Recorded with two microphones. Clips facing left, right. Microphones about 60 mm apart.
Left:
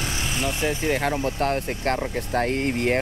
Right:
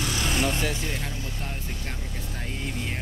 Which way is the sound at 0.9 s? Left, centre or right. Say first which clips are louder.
Left 11 dB; left.